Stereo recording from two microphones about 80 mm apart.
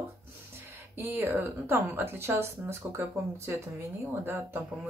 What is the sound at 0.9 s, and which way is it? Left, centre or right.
Speech, right.